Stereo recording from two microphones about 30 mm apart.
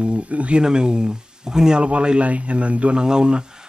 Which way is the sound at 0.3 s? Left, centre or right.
Right.